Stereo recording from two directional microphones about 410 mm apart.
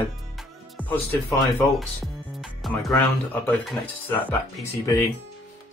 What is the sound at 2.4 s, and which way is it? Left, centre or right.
Music, centre.